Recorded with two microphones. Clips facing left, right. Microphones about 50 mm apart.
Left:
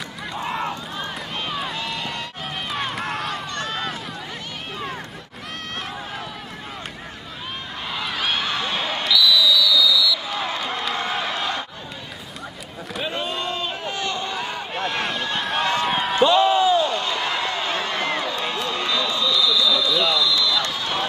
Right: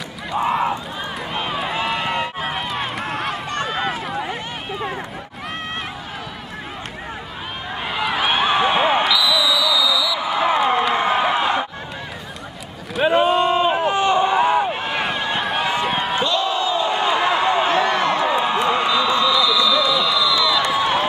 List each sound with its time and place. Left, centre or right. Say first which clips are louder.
0.5 s crowd: right 6 dB; centre
1.3 s run: right 5 dB; centre
1.7 s run: right 7 dB; right
2.7 s run: right 2 dB; centre
3.6 s run: right 5 dB; centre
4.1 s run: right 8 dB; right
7.9 s basketball bounce: right 5 dB; centre
13.0 s boat: right 12 dB; right
13.4 s run: right 10 dB; right; by 16.3 s centre
16.3 s crowd: left 4 dB; left
16.7 s a sound: right 2 dB; right